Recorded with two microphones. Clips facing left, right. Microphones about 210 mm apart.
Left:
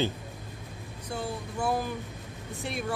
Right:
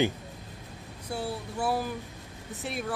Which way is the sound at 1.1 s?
5° right (ahead or behind).